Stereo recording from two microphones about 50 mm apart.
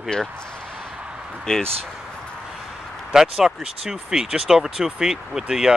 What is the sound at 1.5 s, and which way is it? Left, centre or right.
Speech, centre.